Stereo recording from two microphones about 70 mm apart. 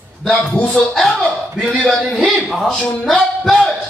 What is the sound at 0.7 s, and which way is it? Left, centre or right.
Speech, centre.